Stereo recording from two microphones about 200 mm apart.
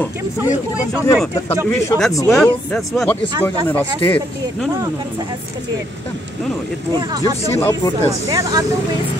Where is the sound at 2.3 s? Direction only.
5° left (ahead or behind).